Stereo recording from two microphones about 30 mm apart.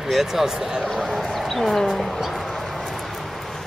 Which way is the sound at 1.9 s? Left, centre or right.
Centre.